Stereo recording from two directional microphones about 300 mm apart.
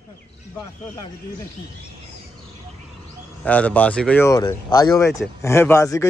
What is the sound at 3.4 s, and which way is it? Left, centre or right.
Speech, centre.